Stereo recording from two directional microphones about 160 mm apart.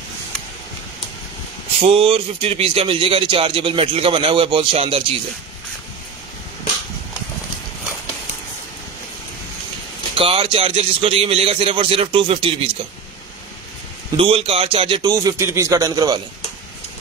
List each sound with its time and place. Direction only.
1.8 s speech: 35° right (ahead or behind)
10.1 s speech: 35° right (ahead or behind)
14.1 s speech: 35° right (ahead or behind)